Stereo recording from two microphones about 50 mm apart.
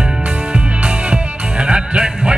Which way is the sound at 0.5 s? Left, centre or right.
Right.